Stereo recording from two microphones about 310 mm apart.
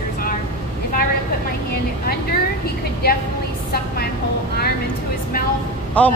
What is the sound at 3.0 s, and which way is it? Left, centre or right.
Speech, left.